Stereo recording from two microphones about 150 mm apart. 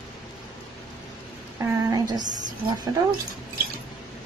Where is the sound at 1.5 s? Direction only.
25° right (ahead or behind).